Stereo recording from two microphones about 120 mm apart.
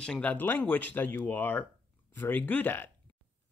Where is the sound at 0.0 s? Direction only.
10° left (ahead or behind).